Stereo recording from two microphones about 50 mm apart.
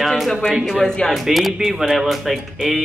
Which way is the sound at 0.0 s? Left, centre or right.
Centre.